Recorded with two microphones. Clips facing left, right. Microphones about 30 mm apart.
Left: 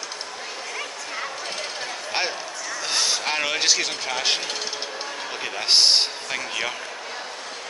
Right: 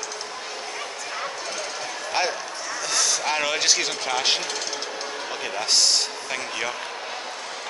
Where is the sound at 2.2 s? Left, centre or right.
Left.